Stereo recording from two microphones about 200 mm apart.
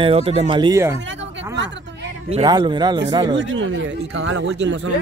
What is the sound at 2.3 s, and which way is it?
Speech, 25° right (ahead or behind).